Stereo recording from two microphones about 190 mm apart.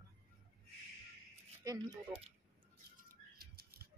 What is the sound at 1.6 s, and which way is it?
Speech, 20° right (ahead or behind).